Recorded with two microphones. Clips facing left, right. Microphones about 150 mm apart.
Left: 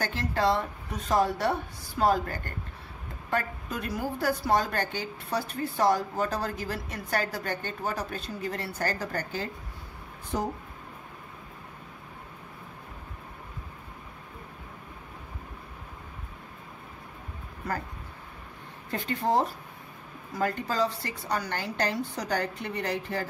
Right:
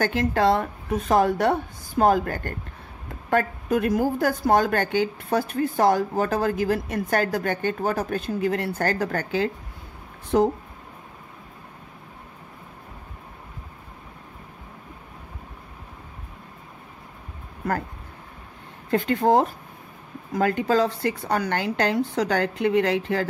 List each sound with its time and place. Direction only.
0.0 s a woman's voice: 55° right (ahead or behind); by 10.5 s 70° right (ahead or behind)
18.9 s a woman's voice: 55° right (ahead or behind); by 23.2 s 75° right (ahead or behind)